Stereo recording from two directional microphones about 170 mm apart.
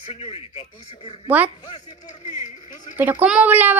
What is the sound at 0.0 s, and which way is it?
Speech, 40° left (ahead or behind).